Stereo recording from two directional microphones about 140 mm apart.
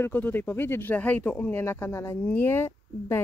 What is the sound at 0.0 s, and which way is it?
Speech, 15° left (ahead or behind).